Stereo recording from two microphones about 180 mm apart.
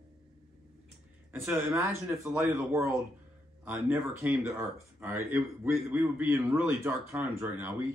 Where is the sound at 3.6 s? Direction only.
15° right (ahead or behind).